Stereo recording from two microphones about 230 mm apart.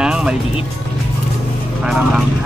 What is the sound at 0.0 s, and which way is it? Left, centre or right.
Music, centre.